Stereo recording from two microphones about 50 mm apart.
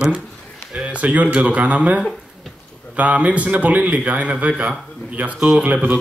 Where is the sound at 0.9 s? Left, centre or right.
Right.